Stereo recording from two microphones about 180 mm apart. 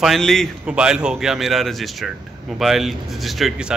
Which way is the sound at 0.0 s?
Centre (ahead or behind).